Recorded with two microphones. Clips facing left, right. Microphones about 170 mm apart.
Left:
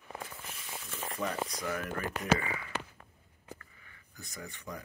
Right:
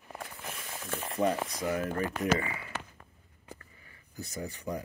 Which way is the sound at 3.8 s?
30° right (ahead or behind).